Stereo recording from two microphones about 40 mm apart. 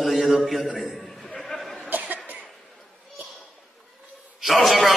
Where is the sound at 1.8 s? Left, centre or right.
Right.